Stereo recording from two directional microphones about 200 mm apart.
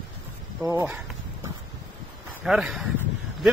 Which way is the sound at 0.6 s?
5° right (ahead or behind).